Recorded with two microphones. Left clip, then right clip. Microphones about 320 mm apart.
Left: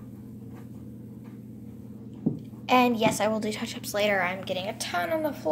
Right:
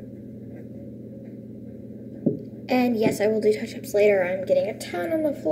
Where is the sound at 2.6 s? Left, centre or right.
Left.